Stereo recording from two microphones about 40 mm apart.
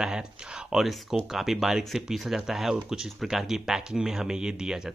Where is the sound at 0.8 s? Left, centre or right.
Centre.